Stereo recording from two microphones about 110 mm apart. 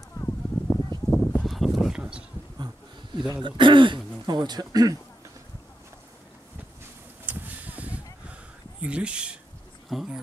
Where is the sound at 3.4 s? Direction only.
45° right (ahead or behind).